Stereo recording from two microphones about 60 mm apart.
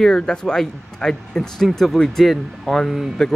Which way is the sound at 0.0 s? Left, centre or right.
Centre.